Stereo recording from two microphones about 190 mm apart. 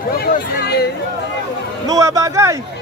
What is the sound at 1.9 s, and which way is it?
Speech, 15° right (ahead or behind).